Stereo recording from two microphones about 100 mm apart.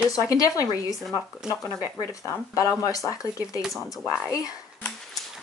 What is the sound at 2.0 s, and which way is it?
Speech, 35° left (ahead or behind).